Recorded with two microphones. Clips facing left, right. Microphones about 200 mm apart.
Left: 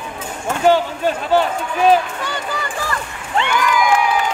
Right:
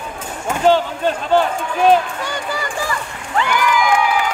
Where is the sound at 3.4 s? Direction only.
25° left (ahead or behind).